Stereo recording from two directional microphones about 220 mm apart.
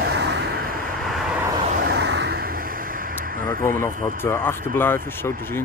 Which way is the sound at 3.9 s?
40° right (ahead or behind).